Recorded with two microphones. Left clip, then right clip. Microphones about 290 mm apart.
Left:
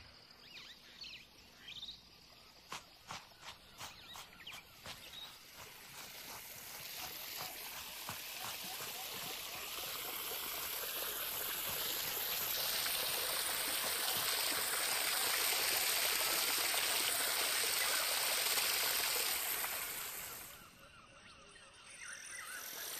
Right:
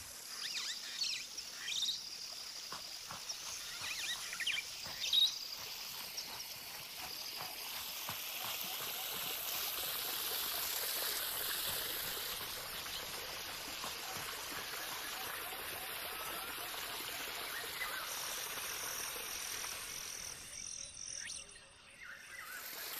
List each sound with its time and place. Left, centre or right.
0.6 s rodents: right
1.7 s cricket: right
3.9 s rodents: right
8.1 s stream: centre